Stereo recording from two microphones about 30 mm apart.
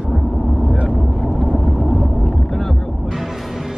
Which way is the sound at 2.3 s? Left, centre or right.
Centre.